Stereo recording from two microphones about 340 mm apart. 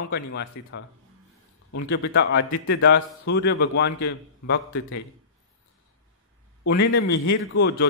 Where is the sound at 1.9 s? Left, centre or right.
Left.